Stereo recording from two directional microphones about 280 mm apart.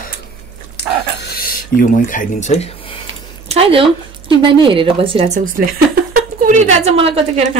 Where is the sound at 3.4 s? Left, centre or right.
Right.